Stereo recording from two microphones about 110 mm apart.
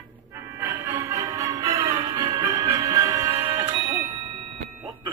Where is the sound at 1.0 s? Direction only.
30° right (ahead or behind).